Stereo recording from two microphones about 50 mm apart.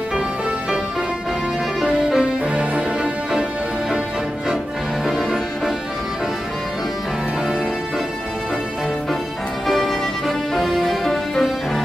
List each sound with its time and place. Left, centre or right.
1.8 s music: centre
5.0 s music: centre
9.7 s music: centre